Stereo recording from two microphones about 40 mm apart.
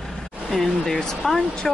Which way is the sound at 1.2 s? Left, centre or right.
Left.